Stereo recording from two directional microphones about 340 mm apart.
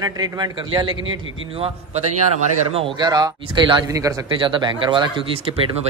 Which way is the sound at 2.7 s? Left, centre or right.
Centre.